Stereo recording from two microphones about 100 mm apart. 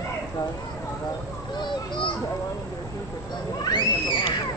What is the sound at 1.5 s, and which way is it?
Speech, 50° left (ahead or behind).